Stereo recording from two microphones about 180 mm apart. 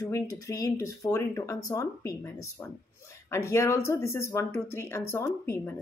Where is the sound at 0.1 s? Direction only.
20° left (ahead or behind).